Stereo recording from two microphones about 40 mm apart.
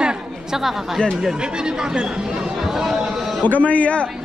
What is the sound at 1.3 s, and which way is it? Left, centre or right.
Chatter, right.